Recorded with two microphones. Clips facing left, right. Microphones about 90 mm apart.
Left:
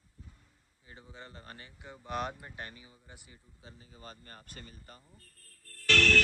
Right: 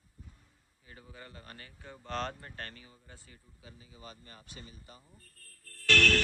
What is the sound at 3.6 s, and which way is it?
Speech, 40° left (ahead or behind).